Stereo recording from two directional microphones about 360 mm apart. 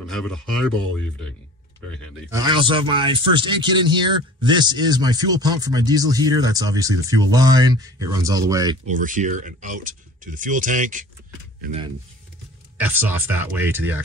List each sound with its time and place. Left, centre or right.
0.0 s speech: centre
2.4 s a man's voice: centre
8.9 s a man's voice: right
12.7 s speech: centre